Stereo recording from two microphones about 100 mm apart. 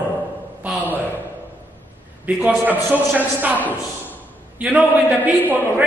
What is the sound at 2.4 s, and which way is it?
A man's voice, 15° right (ahead or behind).